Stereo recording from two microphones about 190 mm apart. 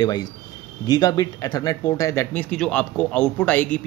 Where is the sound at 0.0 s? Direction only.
20° left (ahead or behind).